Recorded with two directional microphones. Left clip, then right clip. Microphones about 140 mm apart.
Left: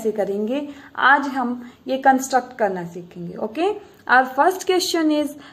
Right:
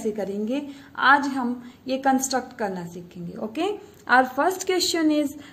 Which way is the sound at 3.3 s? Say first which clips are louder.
Left 5 dB; 20° right (ahead or behind).